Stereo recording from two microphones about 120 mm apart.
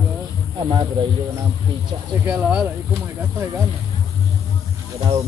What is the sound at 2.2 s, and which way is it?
Speech, 10° right (ahead or behind).